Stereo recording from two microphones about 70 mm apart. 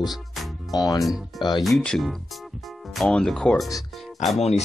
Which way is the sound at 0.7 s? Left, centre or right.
Left.